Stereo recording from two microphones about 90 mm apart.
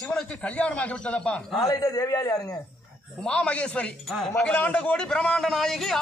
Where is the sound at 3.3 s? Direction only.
10° left (ahead or behind).